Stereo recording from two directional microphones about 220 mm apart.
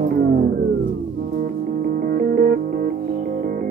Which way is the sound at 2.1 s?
40° right (ahead or behind).